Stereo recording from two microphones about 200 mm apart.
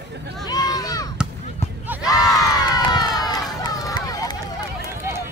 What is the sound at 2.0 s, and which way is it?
Crowd, 15° left (ahead or behind).